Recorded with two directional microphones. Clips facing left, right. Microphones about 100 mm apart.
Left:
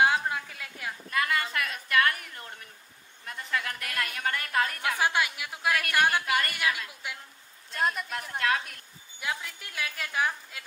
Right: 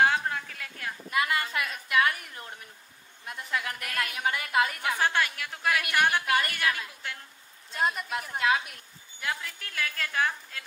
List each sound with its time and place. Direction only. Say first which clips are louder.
0.0 s a sound: even; 10° left (ahead or behind)
1.1 s a woman's voice: right 1 dB; 10° right (ahead or behind)
4.9 s a woman's voice: even; 15° left (ahead or behind)
5.7 s a woman's voice: even; 5° right (ahead or behind)
5.9 s a woman's voice: right 1 dB; 10° left (ahead or behind)
7.7 s a woman's voice: right 1 dB; 5° right (ahead or behind)
9.2 s a woman's voice: even; 15° left (ahead or behind)